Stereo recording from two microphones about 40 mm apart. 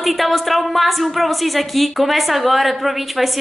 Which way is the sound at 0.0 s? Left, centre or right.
Centre.